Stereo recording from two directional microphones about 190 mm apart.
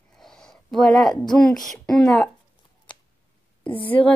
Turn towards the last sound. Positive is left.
turn(degrees=10)  # may be behind; listen again after turning